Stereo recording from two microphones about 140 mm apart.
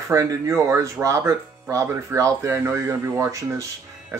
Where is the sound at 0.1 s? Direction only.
25° right (ahead or behind).